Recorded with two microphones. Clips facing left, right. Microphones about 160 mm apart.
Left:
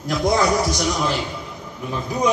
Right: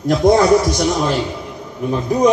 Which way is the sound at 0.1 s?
35° right (ahead or behind).